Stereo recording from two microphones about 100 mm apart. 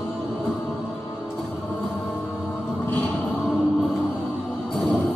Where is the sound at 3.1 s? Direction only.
15° left (ahead or behind).